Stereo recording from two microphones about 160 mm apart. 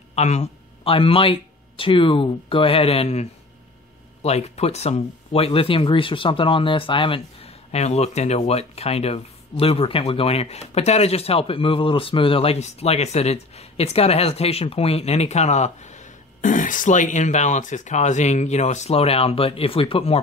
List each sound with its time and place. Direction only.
0.1 s speech: 45° left (ahead or behind)